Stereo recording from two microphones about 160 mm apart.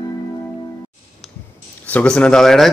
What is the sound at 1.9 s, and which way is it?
Speech, 5° left (ahead or behind).